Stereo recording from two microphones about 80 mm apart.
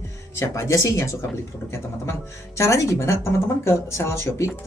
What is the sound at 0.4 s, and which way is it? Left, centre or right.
Speech, left.